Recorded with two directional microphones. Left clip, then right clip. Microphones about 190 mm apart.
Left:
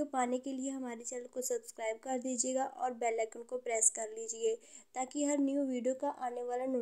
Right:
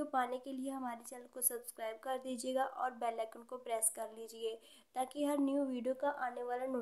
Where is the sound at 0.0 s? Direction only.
10° left (ahead or behind).